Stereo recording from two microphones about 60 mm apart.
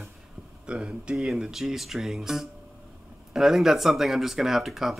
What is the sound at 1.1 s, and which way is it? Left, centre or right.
Speech, centre.